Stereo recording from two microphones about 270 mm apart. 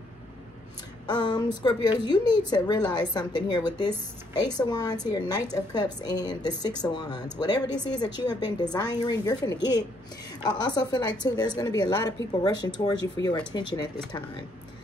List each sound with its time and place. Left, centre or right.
1.0 s a woman's voice: centre